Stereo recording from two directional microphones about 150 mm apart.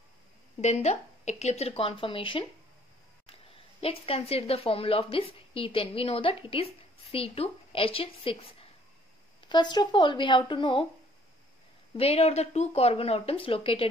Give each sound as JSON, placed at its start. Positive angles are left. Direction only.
{"t": 0.6, "sound": "a woman's voice", "side_deg": 50}
{"t": 11.9, "sound": "speech", "side_deg": 40}